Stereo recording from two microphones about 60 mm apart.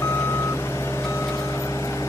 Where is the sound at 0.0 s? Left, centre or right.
Left.